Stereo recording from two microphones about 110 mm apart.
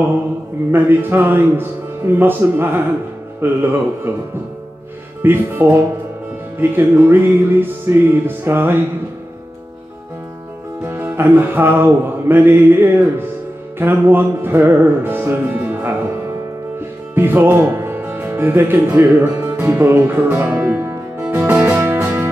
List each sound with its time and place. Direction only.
0.7 s music: 20° right (ahead or behind)
3.4 s speech: 20° right (ahead or behind)
5.2 s music: 20° right (ahead or behind)
10.8 s music: 20° right (ahead or behind)
17.1 s speech: 20° right (ahead or behind)
19.4 s music: 25° right (ahead or behind)